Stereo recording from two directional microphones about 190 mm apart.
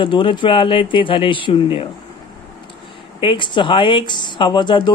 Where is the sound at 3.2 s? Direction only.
25° left (ahead or behind).